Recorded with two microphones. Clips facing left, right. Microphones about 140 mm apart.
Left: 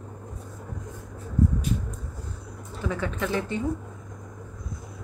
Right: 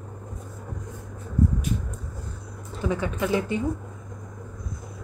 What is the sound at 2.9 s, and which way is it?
Speech, 15° right (ahead or behind).